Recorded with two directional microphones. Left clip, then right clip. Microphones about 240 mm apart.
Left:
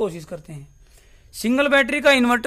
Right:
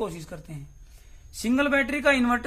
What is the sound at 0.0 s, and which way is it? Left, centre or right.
A man's voice, left.